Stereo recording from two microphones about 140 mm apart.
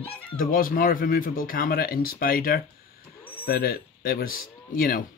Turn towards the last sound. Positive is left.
turn(degrees=90)